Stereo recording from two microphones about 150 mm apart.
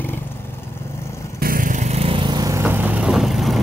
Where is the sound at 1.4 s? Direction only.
70° right (ahead or behind); by 2.6 s 25° right (ahead or behind).